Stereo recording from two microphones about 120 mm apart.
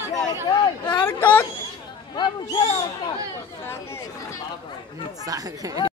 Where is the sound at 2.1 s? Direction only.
40° left (ahead or behind).